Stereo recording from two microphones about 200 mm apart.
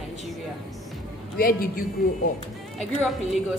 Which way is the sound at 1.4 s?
45° left (ahead or behind).